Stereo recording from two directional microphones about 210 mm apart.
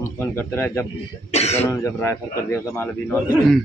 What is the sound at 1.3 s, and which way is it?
Speech, 30° left (ahead or behind).